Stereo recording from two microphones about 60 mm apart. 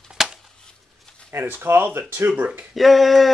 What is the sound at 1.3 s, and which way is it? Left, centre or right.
Speech, right.